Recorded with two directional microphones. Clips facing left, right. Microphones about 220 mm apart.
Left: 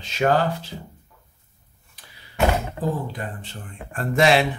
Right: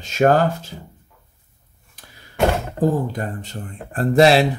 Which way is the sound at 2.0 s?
45° right (ahead or behind).